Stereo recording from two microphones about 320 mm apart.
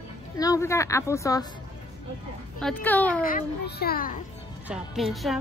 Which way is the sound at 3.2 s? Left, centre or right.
Left.